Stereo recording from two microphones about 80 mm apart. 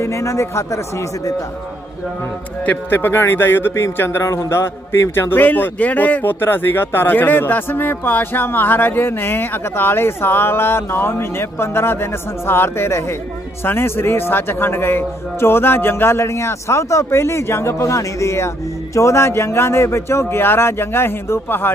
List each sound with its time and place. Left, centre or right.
0.0 s a man's voice: left
2.6 s speech: left
5.3 s a man's voice: left